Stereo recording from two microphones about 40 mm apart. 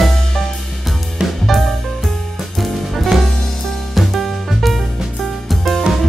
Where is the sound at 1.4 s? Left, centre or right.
Centre.